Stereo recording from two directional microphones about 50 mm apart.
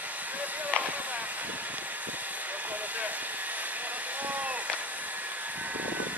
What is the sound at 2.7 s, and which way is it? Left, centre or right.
Vehicle, right.